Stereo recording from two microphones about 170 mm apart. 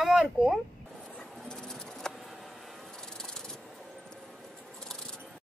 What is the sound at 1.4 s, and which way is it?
Bird, 5° left (ahead or behind).